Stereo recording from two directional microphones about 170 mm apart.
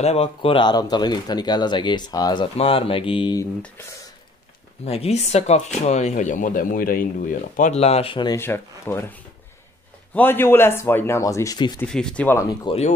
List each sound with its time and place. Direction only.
0.0 s speech: 35° left (ahead or behind)
4.8 s speech: 35° left (ahead or behind)
8.4 s speech: 15° left (ahead or behind)
10.1 s speech: 10° left (ahead or behind)
11.8 s speech: 5° left (ahead or behind)
12.7 s speech: 30° left (ahead or behind)